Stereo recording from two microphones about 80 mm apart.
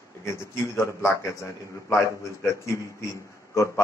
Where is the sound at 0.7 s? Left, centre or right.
Left.